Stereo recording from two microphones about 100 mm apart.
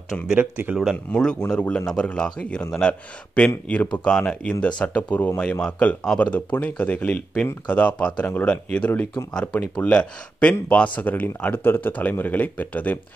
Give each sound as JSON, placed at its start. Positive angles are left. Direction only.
{"t": 0.4, "sound": "speech", "side_deg": -15}
{"t": 1.1, "sound": "speech", "side_deg": 5}